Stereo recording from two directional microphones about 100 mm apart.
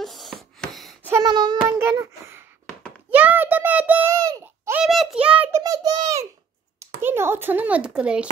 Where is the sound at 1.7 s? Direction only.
25° right (ahead or behind).